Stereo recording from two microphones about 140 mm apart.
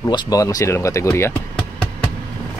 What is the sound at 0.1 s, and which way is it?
Speech, 30° left (ahead or behind).